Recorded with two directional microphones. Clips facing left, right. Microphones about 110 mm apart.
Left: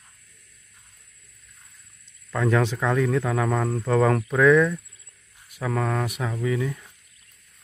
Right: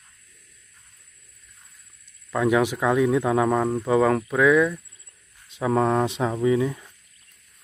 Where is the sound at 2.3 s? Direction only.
15° right (ahead or behind).